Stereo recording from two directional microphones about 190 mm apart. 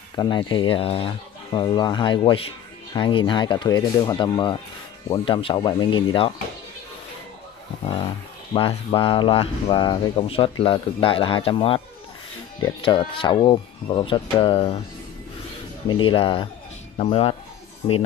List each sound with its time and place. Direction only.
0.1 s speech: 25° left (ahead or behind)
8.5 s speech: 30° left (ahead or behind)
15.9 s speech: 25° left (ahead or behind)